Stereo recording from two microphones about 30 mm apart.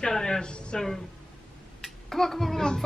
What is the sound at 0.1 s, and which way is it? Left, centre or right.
Speech, centre.